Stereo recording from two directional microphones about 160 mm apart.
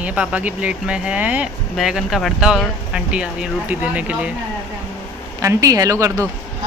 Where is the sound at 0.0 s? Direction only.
10° right (ahead or behind).